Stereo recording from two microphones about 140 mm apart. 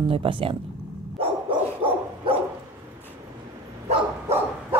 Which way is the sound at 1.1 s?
40° right (ahead or behind).